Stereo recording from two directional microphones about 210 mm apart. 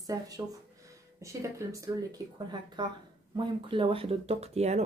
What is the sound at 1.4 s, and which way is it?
Speech, 15° right (ahead or behind).